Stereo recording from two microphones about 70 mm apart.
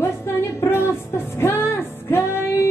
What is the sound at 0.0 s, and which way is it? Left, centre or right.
Music, left.